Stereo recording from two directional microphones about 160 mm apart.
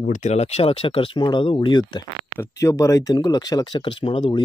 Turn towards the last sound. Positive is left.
turn(degrees=30)  # may be behind; listen again after turning